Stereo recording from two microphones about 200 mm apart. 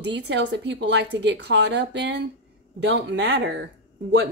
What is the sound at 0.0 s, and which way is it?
Speech, 60° right (ahead or behind).